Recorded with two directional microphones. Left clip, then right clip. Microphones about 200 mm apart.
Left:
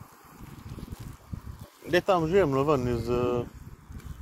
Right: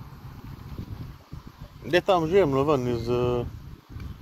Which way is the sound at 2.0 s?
20° right (ahead or behind).